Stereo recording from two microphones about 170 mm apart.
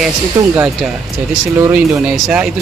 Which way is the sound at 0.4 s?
20° right (ahead or behind).